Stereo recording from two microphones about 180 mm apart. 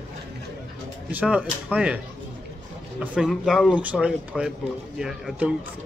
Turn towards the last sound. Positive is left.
turn(degrees=-5)  # may be behind; listen again after turning